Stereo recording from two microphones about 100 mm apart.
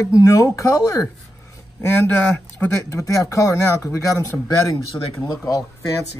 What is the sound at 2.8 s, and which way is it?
Speech, 35° left (ahead or behind).